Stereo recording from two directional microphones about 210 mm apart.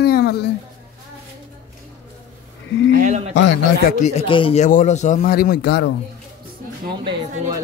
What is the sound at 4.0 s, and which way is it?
Speech, 30° left (ahead or behind).